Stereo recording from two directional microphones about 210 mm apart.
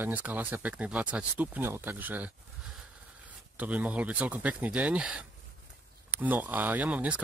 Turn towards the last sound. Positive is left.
turn(degrees=-5)  # may be behind; listen again after turning